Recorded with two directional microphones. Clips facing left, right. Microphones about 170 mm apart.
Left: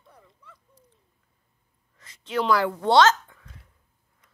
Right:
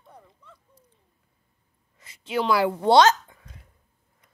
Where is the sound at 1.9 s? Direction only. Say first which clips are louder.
Even; 10° right (ahead or behind).